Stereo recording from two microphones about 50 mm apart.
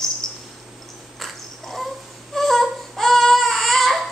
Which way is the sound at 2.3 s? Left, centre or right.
Centre.